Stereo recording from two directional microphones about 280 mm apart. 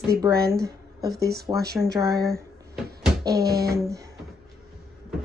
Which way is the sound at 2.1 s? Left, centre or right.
Centre.